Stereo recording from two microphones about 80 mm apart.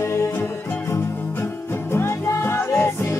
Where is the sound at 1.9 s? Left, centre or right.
Left.